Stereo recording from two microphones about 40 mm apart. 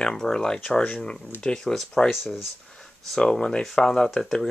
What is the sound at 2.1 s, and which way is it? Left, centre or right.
Speech, centre.